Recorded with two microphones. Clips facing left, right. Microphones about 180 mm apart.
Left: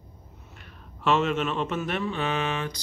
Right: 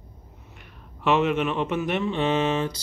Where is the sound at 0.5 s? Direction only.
15° right (ahead or behind).